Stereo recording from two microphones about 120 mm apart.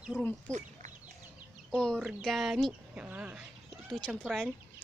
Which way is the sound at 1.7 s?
5° left (ahead or behind).